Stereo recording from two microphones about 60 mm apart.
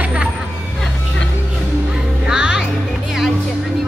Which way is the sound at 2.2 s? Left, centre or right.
Centre.